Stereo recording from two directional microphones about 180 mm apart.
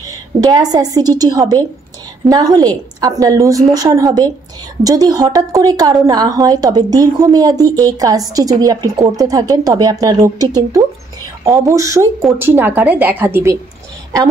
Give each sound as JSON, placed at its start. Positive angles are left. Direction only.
{"t": 0.0, "sound": "a woman's voice", "side_deg": -20}